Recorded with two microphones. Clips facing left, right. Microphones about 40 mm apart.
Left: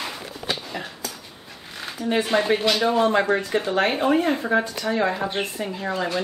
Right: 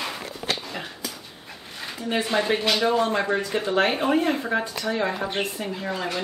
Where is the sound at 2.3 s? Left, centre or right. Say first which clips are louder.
Left 2 dB; left.